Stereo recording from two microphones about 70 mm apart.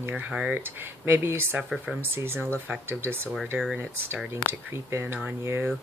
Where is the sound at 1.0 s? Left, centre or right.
Right.